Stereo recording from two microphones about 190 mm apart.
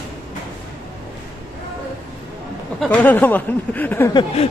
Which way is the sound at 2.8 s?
10° left (ahead or behind).